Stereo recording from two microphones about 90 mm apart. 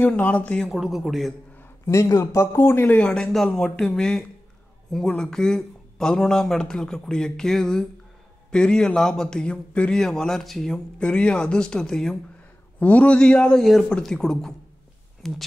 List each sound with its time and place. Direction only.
0.0 s a man's voice: 15° left (ahead or behind)
0.7 s speech: 5° right (ahead or behind)
1.6 s a man's voice: 35° left (ahead or behind)
3.0 s a man's voice: 10° left (ahead or behind)